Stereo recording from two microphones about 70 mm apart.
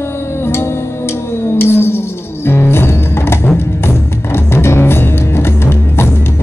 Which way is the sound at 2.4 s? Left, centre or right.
Left.